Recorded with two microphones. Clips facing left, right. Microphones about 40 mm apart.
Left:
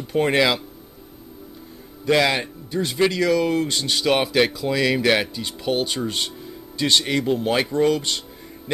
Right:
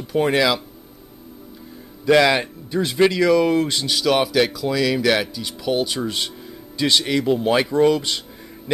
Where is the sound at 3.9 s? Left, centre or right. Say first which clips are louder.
Right 1 dB; centre.